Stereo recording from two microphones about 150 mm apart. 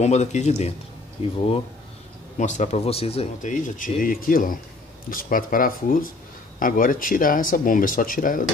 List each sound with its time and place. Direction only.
0.0 s speech: 50° left (ahead or behind)
2.3 s speech: 55° left (ahead or behind)
3.4 s speech: 60° left (ahead or behind)